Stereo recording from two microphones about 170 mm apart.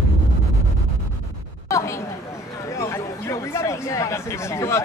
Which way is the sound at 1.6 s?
15° left (ahead or behind).